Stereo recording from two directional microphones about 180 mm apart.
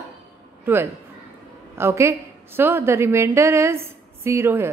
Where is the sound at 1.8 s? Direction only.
15° right (ahead or behind).